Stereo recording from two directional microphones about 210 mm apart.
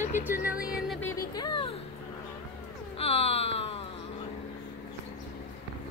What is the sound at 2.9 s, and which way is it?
Wail, 30° left (ahead or behind).